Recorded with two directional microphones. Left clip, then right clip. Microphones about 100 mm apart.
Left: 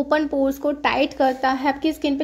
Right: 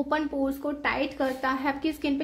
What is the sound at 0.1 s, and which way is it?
A woman's voice, 55° left (ahead or behind).